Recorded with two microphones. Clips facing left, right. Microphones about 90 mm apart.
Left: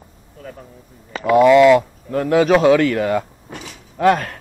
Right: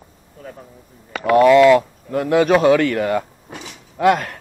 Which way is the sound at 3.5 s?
15° right (ahead or behind).